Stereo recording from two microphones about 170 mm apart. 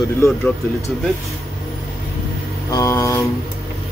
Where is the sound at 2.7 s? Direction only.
15° left (ahead or behind).